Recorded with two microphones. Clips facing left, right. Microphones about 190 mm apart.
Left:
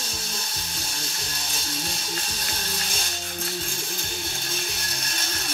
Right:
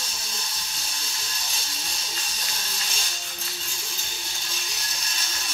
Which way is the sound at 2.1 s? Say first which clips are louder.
Left 5 dB; 55° left (ahead or behind).